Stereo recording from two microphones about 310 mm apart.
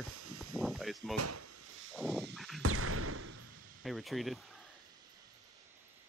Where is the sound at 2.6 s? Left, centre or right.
Right.